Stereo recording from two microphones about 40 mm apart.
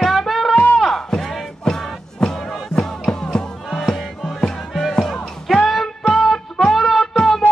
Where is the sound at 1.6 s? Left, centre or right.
Centre.